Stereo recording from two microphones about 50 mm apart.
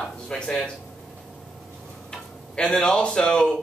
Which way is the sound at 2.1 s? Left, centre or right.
Centre.